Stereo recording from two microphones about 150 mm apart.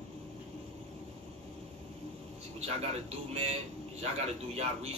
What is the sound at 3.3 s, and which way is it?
A man's voice, 45° right (ahead or behind).